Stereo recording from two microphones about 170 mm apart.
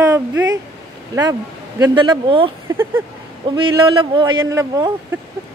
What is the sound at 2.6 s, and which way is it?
Speech, 15° right (ahead or behind).